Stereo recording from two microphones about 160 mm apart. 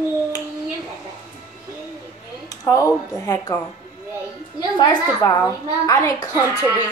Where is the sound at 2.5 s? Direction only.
20° left (ahead or behind).